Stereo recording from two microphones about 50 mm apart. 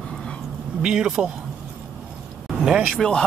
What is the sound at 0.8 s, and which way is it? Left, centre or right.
Speech, centre.